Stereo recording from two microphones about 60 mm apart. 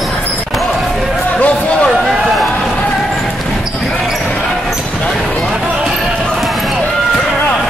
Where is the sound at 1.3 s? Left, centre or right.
Left.